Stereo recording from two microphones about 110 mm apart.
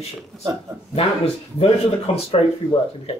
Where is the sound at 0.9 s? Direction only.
60° left (ahead or behind).